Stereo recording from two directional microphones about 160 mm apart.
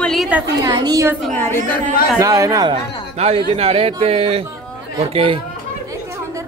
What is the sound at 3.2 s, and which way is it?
A man's voice, 40° right (ahead or behind).